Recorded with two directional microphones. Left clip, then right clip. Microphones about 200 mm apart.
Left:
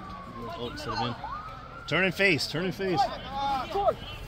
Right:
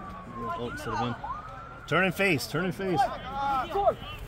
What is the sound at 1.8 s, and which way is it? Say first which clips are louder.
A man's voice: left 1 dB; 55° right (ahead or behind).